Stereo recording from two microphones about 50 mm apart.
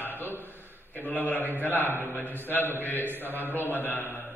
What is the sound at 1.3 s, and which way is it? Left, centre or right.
A man's voice, left.